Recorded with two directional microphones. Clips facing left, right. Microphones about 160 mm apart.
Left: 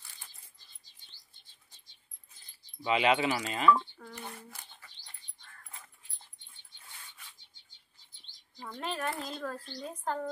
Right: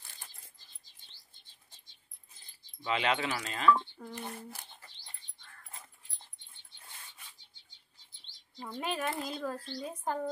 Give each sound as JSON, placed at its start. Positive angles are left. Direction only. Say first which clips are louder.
{"t": 2.8, "sound": "speech", "louder": "left 4 dB", "side_deg": 5}
{"t": 4.0, "sound": "a sound", "louder": "right 3 dB", "side_deg": -30}
{"t": 8.7, "sound": "speech", "louder": "right 1 dB", "side_deg": -10}